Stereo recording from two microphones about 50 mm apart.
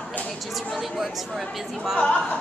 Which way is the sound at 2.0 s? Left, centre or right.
Centre.